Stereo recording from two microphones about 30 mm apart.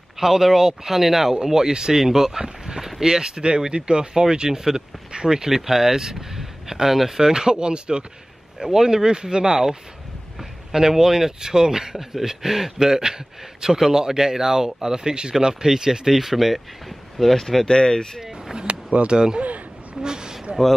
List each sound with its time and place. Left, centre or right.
0.2 s speech: centre
1.3 s a man's voice: right
2.0 s a man's voice: centre
5.5 s a man's voice: centre
7.5 s speech: right
8.5 s a man's voice: centre
10.7 s a man's voice: centre
16.1 s speech: centre
17.4 s speech: centre
17.6 s speech: left
18.7 s speech: right
19.1 s a man's voice: right
20.0 s a sound: right